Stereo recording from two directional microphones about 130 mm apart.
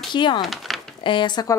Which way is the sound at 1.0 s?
40° left (ahead or behind).